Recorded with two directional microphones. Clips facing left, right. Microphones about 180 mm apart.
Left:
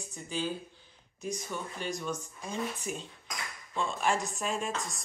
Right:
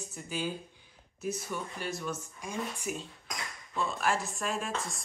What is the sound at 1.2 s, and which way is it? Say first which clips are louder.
Speech: right 1 dB; 5° right (ahead or behind).